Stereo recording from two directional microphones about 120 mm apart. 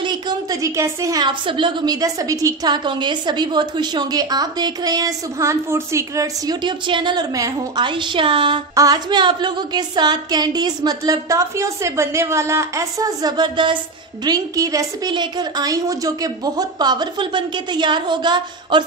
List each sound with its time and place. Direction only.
0.0 s a woman's voice: 35° right (ahead or behind)
8.7 s a woman's voice: 30° right (ahead or behind)